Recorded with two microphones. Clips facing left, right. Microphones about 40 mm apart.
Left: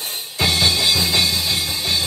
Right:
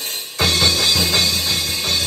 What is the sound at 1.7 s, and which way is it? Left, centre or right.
Music, right.